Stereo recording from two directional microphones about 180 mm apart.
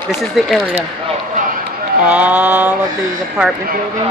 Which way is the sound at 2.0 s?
10° right (ahead or behind).